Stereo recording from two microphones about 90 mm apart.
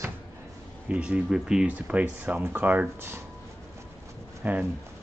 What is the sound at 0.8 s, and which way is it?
Speech, 15° right (ahead or behind).